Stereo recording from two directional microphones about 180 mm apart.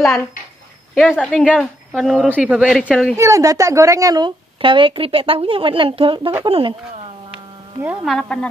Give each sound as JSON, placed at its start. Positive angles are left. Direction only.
{"t": 0.9, "sound": "speech", "side_deg": 0}
{"t": 3.2, "sound": "speech", "side_deg": -15}
{"t": 7.8, "sound": "speech", "side_deg": -5}